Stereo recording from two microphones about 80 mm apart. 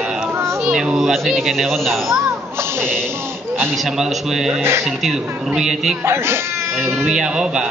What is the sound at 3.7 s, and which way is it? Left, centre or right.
Speech, centre.